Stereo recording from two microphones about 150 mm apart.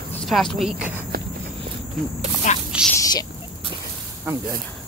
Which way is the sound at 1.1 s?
75° right (ahead or behind).